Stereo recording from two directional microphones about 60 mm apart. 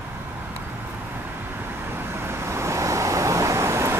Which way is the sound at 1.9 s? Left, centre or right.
Right.